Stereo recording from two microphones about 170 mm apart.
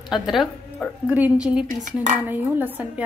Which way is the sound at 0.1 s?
Centre (ahead or behind).